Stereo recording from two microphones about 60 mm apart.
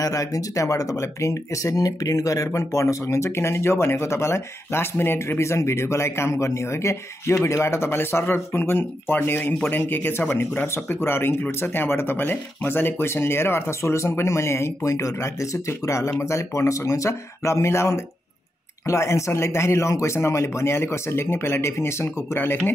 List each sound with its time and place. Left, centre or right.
0.0 s speech: left